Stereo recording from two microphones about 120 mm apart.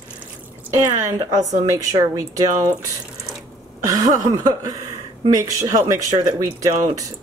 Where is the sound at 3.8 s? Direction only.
30° right (ahead or behind).